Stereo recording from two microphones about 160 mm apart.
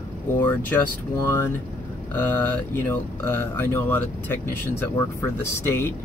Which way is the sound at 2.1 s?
10° left (ahead or behind).